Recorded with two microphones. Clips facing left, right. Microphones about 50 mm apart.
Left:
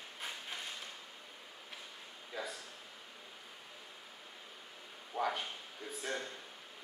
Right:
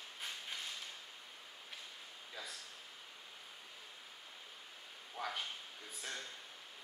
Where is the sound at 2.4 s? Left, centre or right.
Centre.